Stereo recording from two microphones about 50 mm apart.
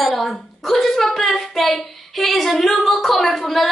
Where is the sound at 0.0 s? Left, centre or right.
Centre.